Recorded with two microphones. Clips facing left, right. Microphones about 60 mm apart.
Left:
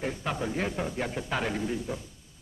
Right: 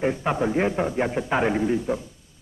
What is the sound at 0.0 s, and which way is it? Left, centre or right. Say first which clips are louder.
A man's voice: right 8 dB; right.